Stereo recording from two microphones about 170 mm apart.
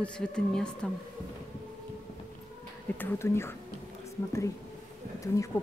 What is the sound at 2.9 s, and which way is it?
A woman's voice, 15° left (ahead or behind).